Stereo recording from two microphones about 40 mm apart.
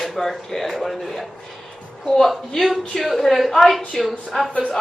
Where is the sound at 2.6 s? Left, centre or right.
Centre.